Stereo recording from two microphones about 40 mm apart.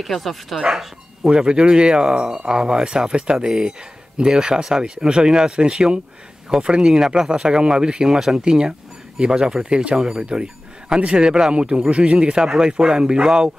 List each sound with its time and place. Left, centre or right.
0.0 s speech: centre
1.3 s speech: right